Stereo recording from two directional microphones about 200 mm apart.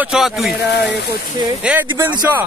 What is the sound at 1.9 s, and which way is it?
Speech, 10° right (ahead or behind).